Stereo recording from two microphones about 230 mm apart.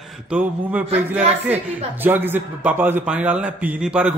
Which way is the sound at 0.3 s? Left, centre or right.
Centre.